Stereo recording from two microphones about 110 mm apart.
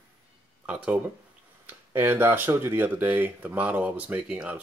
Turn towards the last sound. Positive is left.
turn(degrees=-15)  # may be behind; listen again after turning